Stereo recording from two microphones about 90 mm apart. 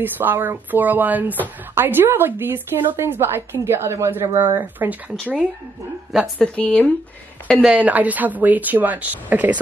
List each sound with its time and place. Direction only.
0.0 s speech: 20° right (ahead or behind)
6.3 s speech: 10° left (ahead or behind)
7.6 s speech: 15° right (ahead or behind)